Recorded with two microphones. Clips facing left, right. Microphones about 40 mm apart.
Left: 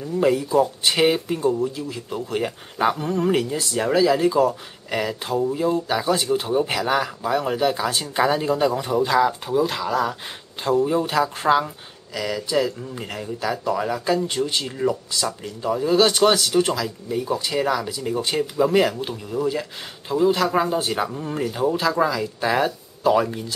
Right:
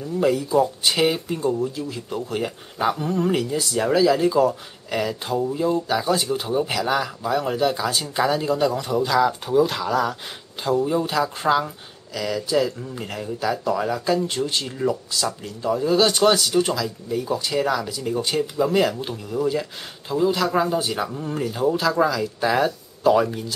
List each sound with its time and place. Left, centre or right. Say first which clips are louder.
0.0 s speech: left 1 dB; centre
9.3 s speech: right 2 dB; centre
19.0 s speech: even; centre
20.8 s speech: left 2 dB; centre
21.1 s speech: even; centre